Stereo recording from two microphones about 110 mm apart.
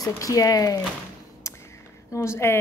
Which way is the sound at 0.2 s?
30° left (ahead or behind).